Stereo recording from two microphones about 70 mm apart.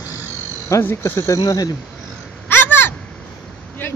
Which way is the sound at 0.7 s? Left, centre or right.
Left.